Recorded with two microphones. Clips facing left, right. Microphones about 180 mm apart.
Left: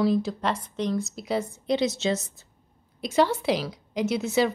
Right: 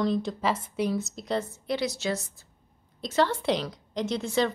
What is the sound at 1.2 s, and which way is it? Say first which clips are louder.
Speech: left 2 dB; 5° left (ahead or behind).